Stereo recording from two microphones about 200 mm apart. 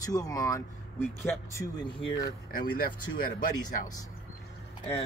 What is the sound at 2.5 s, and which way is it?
Speech, 45° left (ahead or behind).